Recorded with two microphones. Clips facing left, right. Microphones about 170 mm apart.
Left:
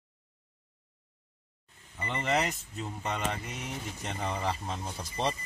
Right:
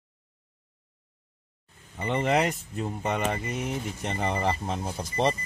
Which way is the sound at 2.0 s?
55° right (ahead or behind).